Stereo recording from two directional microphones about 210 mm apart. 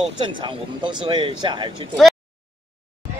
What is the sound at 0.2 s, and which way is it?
Speech, 20° right (ahead or behind).